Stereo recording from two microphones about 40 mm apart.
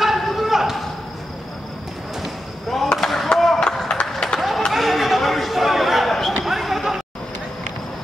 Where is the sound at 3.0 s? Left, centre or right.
Centre.